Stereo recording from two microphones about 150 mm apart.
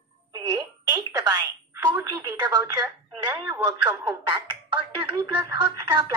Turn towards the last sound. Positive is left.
turn(degrees=-30)  # may be behind; listen again after turning